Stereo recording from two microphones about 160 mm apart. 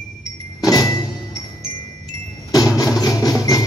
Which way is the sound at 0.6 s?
20° left (ahead or behind).